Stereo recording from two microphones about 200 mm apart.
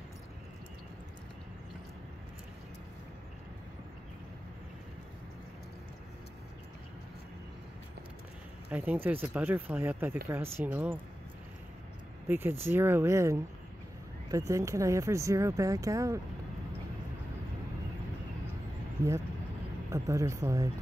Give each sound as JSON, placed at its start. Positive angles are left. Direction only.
{"t": 8.6, "sound": "speech", "side_deg": -10}
{"t": 12.3, "sound": "speech", "side_deg": -10}
{"t": 19.9, "sound": "speech", "side_deg": -15}